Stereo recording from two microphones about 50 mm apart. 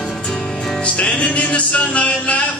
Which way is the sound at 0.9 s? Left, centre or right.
Left.